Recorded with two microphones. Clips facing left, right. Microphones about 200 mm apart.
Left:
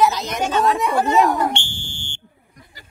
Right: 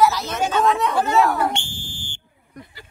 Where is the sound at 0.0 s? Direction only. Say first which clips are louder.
Even; 15° left (ahead or behind).